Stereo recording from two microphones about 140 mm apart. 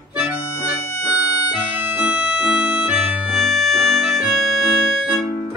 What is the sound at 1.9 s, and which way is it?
Music, 10° right (ahead or behind).